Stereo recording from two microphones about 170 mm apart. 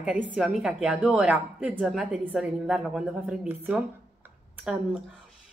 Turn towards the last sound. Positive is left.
turn(degrees=-5)  # may be behind; listen again after turning